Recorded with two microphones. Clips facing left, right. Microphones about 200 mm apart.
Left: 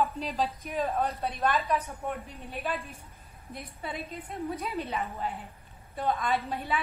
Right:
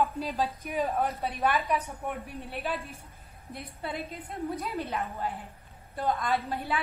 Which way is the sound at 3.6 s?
Centre (ahead or behind).